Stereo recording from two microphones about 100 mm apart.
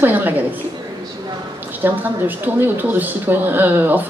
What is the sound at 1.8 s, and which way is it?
A woman's voice, 20° right (ahead or behind).